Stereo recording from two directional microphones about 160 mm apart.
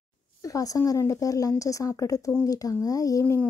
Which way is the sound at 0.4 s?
20° left (ahead or behind).